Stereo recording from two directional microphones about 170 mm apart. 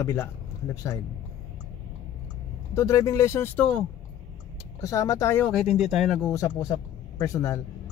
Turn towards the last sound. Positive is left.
turn(degrees=20)  # may be behind; listen again after turning